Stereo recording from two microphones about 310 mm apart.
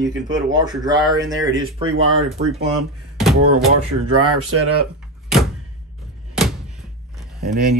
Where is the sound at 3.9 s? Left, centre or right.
Right.